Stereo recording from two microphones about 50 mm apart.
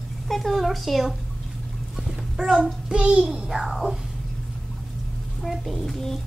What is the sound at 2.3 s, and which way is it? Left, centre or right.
A child's voice, centre.